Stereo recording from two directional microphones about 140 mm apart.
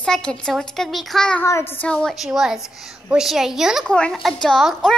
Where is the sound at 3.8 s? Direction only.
5° left (ahead or behind).